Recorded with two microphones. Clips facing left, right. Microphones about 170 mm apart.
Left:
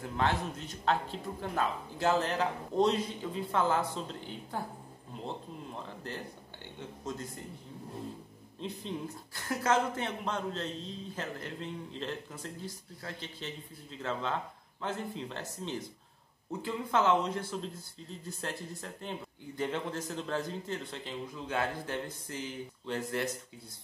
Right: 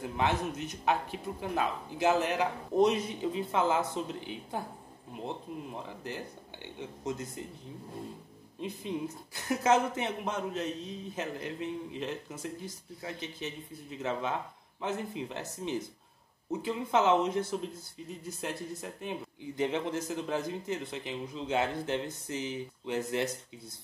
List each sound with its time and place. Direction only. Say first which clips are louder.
0.2 s speech: right 1 dB; 15° right (ahead or behind)
7.1 s speech: right 3 dB; 20° right (ahead or behind)
8.5 s speech: right 3 dB; 10° right (ahead or behind)